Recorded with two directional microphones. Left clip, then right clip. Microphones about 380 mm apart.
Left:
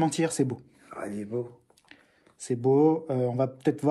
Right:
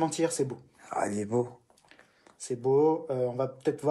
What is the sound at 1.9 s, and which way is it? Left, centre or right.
Speech, left.